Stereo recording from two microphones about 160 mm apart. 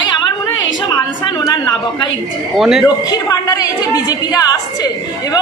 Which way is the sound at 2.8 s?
25° left (ahead or behind).